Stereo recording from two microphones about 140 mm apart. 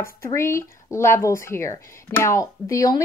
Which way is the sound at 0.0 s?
20° left (ahead or behind).